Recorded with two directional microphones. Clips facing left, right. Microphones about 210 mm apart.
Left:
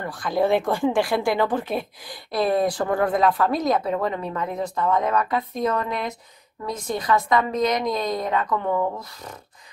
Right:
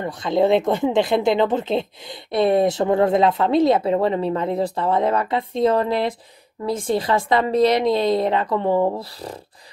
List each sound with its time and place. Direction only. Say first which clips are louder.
0.0 s speech: right 4 dB; 20° right (ahead or behind)